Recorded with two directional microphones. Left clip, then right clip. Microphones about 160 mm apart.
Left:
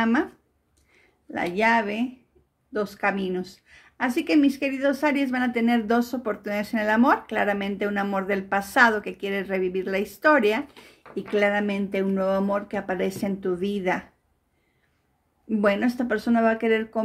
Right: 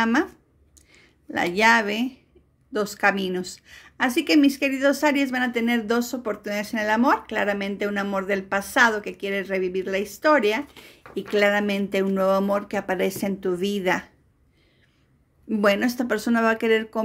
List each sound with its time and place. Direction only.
0.0 s a woman's voice: 20° right (ahead or behind); by 10.6 s 5° right (ahead or behind)
11.1 s speech: 15° right (ahead or behind)
15.4 s speech: 20° right (ahead or behind)